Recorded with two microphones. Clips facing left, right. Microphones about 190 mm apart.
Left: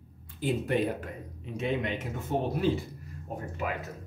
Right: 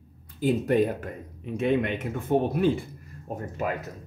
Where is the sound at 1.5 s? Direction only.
55° right (ahead or behind).